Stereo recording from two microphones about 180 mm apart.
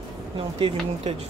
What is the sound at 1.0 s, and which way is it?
Speech, 35° right (ahead or behind).